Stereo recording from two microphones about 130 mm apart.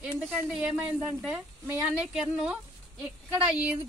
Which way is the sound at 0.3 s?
5° right (ahead or behind).